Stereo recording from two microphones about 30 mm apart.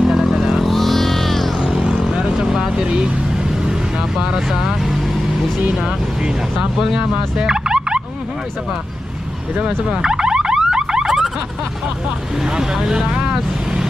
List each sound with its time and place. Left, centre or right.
0.0 s vehicle: centre
0.7 s music: centre
2.3 s vehicle: centre
2.8 s a sound: right
4.2 s speech: right
5.8 s speech: right
6.8 s turkey: centre
9.6 s car alarm: right
11.1 s car alarm: centre
12.7 s speech: centre
13.3 s vehicle: centre